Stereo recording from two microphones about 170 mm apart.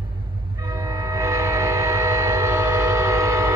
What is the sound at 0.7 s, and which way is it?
Train, 20° right (ahead or behind).